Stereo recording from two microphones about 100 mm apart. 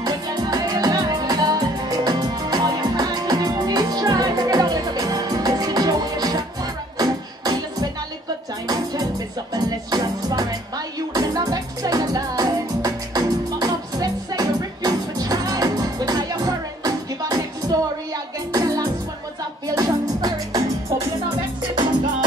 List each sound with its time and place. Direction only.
0.0 s music: 40° right (ahead or behind)